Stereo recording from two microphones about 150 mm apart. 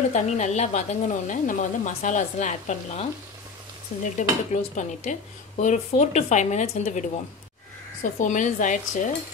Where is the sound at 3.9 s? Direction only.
60° left (ahead or behind).